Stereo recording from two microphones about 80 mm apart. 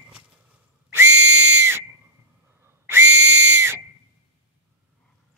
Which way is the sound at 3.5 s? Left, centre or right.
Right.